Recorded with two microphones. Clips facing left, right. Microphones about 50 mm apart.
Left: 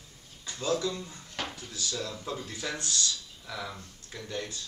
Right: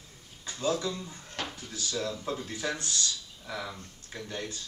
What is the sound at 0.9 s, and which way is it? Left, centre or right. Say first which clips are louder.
Drawer open or close: even; centre.